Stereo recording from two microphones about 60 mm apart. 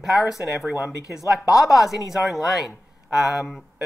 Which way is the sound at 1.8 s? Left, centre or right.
Centre.